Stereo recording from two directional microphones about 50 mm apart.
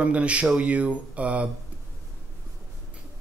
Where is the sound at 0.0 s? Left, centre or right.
Right.